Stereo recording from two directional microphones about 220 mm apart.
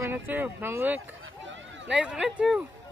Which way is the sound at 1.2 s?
55° right (ahead or behind).